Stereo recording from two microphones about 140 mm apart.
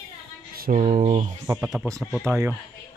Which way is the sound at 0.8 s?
50° right (ahead or behind).